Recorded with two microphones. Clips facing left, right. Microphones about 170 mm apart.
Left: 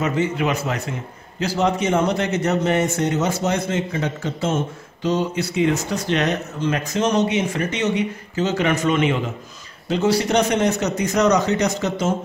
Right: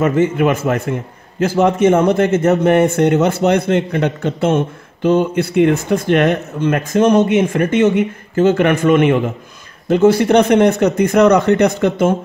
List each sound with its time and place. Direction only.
0.0 s a man's voice: 50° right (ahead or behind)